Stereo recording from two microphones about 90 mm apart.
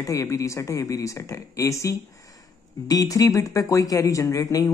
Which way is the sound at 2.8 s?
45° left (ahead or behind).